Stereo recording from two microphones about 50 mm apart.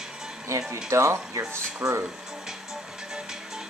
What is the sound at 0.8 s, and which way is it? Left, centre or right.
Speech, right.